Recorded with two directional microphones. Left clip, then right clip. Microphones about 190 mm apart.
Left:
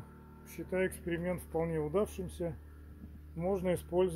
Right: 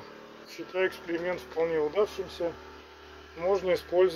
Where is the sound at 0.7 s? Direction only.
20° left (ahead or behind).